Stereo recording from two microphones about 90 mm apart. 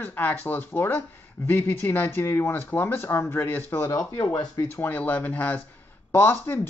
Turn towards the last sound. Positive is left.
turn(degrees=25)  # may be behind; listen again after turning